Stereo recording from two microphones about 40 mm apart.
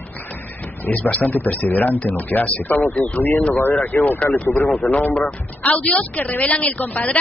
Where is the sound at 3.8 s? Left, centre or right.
Left.